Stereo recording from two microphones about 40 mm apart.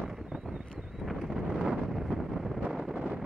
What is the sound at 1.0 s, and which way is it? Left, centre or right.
Wind noise, centre.